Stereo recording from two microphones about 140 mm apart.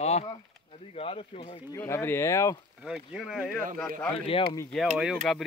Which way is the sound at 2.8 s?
5° right (ahead or behind).